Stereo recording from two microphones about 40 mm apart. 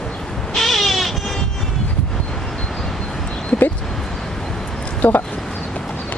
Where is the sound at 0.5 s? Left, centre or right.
Centre.